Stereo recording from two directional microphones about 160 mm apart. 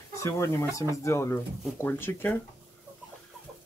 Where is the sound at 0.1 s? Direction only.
20° left (ahead or behind).